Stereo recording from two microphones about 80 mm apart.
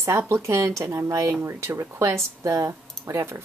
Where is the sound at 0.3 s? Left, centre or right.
Right.